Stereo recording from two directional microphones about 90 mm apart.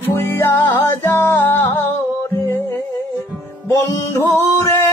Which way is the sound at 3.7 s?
40° left (ahead or behind).